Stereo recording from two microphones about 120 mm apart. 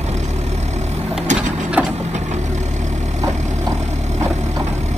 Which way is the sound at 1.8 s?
15° right (ahead or behind).